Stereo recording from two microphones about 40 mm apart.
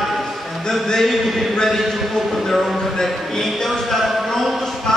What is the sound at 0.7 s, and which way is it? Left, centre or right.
Speech, centre.